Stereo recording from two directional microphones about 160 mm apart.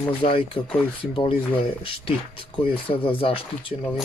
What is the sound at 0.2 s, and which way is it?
Speech, 40° left (ahead or behind).